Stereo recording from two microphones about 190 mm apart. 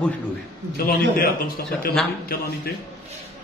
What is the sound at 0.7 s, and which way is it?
Speech, 50° left (ahead or behind).